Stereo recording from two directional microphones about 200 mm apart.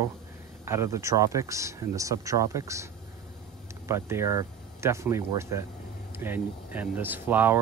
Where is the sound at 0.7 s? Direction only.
15° right (ahead or behind).